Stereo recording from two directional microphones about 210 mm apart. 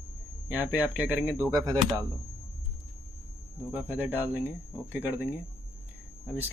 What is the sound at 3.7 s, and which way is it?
Speech, 5° right (ahead or behind).